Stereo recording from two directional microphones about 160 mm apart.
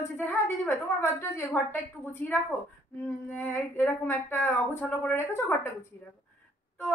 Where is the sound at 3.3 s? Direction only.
15° left (ahead or behind).